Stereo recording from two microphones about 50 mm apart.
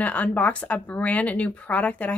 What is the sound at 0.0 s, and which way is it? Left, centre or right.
Speech, left.